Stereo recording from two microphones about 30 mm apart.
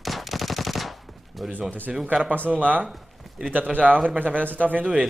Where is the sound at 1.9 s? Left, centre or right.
Centre.